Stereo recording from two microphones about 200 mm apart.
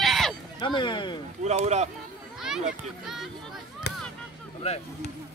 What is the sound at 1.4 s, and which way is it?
Speech, 35° right (ahead or behind).